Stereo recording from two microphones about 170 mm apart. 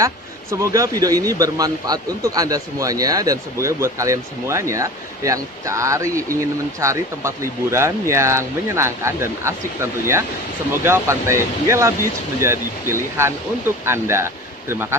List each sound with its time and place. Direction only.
0.0 s speech: 20° right (ahead or behind)
10.7 s speech: 15° right (ahead or behind)